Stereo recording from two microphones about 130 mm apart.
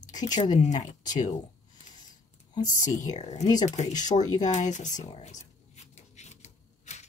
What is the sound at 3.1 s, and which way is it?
Speech, 55° left (ahead or behind).